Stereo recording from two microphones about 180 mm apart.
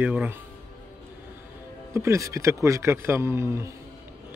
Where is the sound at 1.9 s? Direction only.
15° right (ahead or behind).